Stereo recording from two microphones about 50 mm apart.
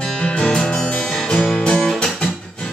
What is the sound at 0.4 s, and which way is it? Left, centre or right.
Music, centre.